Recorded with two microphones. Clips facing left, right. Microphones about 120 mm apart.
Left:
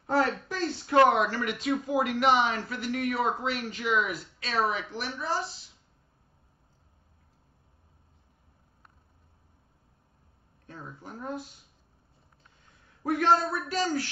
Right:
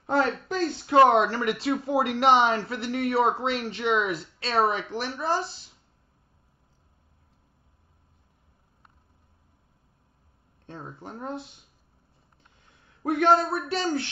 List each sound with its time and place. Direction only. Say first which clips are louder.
0.0 s speech: right 2 dB; 20° right (ahead or behind)
10.7 s speech: right 3 dB; 25° right (ahead or behind)
13.0 s speech: right 3 dB; 25° right (ahead or behind)